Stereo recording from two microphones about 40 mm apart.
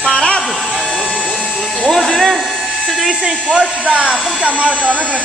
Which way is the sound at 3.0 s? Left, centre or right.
Centre.